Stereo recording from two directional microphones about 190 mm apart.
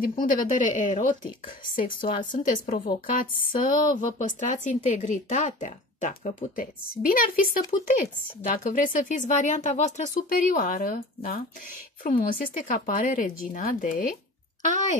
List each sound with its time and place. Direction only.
0.2 s speech: 45° left (ahead or behind)